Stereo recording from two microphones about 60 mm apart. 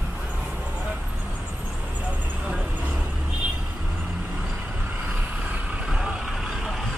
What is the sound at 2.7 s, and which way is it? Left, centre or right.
Vehicle, right.